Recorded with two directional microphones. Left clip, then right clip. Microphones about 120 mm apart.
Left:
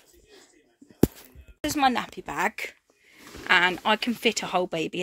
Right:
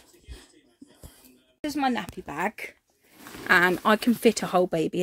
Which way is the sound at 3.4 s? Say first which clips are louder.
Right 1 dB; 60° right (ahead or behind).